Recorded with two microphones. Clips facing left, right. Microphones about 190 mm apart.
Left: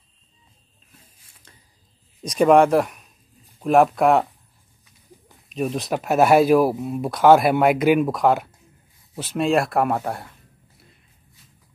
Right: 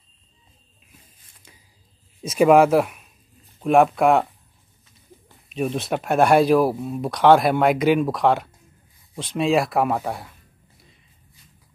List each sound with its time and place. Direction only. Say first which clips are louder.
2.2 s speech: even; 5° right (ahead or behind)
5.3 s speech: even; centre (ahead or behind)
10.8 s walk: left 1 dB; centre (ahead or behind)